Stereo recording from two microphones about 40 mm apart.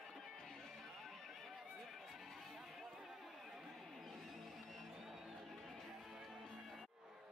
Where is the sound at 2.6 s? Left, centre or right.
Centre.